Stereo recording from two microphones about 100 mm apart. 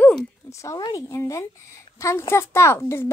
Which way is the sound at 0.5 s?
30° left (ahead or behind).